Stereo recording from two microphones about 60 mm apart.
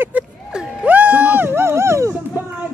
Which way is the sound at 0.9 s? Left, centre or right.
Right.